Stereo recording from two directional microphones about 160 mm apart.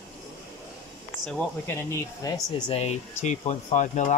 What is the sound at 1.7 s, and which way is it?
Speech, 20° left (ahead or behind).